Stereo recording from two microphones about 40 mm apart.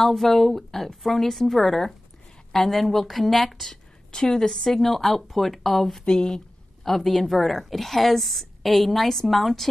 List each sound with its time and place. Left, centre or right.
0.0 s a woman's voice: centre
4.1 s a woman's voice: centre
6.0 s speech: centre
6.8 s a woman's voice: centre